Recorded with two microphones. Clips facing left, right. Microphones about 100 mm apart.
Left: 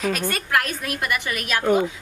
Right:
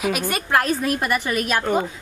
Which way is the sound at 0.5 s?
35° right (ahead or behind).